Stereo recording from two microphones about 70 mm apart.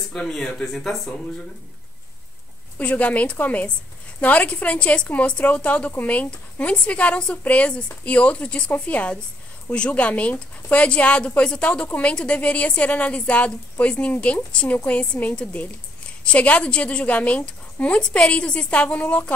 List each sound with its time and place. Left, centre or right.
0.2 s speech: centre
2.8 s a woman's voice: centre